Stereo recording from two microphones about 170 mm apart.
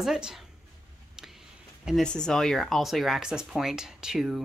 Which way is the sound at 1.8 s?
Centre (ahead or behind).